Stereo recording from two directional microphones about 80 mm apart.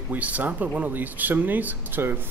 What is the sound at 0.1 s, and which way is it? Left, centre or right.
Speech, centre.